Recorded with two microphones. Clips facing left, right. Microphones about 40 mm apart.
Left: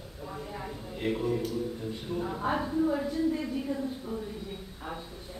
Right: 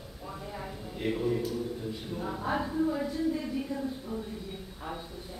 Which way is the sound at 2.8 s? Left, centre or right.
Centre.